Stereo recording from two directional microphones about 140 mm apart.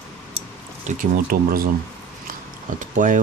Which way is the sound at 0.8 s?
80° right.